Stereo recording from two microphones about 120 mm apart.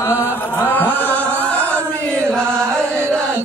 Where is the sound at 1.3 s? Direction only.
10° left (ahead or behind).